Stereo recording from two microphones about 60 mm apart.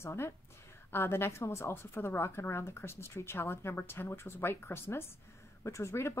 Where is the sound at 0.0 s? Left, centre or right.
Left.